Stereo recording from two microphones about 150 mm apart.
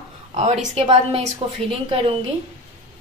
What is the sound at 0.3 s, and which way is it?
A woman's voice, 50° right (ahead or behind).